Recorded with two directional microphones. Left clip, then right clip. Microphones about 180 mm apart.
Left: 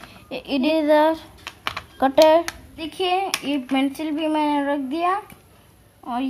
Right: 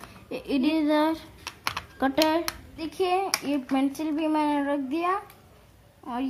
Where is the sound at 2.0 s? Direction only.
15° left (ahead or behind).